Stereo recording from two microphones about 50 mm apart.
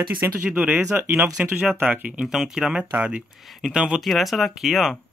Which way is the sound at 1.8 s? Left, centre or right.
Right.